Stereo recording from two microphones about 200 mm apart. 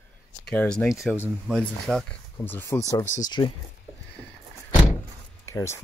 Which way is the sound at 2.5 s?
10° left (ahead or behind).